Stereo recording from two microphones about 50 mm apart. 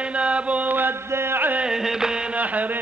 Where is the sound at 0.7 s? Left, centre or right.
Right.